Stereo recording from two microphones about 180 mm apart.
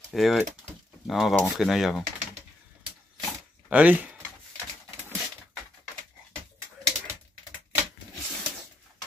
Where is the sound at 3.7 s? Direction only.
10° right (ahead or behind).